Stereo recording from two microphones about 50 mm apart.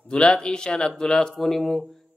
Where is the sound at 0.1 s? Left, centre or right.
Centre.